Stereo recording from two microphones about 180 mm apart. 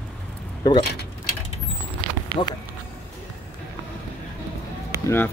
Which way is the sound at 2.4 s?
25° left (ahead or behind).